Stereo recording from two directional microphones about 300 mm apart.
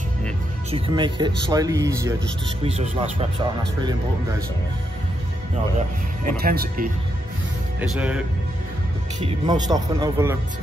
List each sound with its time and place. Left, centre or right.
0.7 s speech: centre
6.2 s speech: right
7.8 s speech: centre
9.2 s speech: centre